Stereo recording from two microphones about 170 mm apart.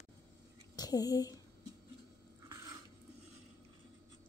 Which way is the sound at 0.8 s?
20° left (ahead or behind).